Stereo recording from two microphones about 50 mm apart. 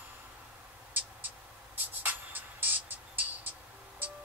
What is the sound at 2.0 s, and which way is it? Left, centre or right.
Music, right.